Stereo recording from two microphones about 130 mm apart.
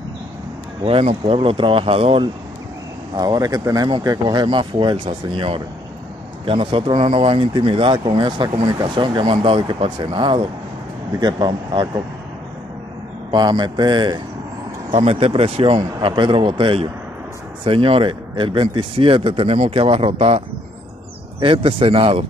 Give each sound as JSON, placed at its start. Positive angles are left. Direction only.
{"t": 0.8, "sound": "speech", "side_deg": -50}
{"t": 3.2, "sound": "speech", "side_deg": -30}
{"t": 13.3, "sound": "speech", "side_deg": -35}
{"t": 14.9, "sound": "speech", "side_deg": -50}